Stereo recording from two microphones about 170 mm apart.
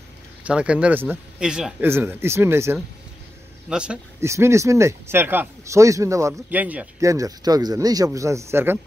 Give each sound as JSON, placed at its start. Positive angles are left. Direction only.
{"t": 0.4, "sound": "speech", "side_deg": -5}
{"t": 4.3, "sound": "speech", "side_deg": -15}